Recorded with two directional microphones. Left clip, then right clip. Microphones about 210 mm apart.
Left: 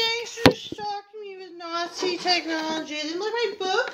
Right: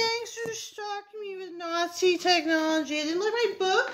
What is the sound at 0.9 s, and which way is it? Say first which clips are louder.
Speech: left 1 dB; 65° right (ahead or behind).